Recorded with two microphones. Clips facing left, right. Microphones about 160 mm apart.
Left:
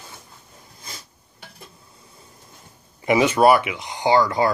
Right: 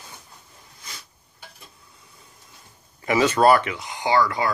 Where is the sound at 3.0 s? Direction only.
15° left (ahead or behind).